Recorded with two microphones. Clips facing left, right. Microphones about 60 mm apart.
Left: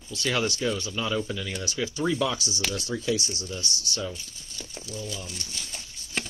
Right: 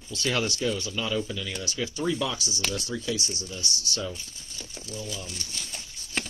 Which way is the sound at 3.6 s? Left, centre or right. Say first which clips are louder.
Right 1 dB; left.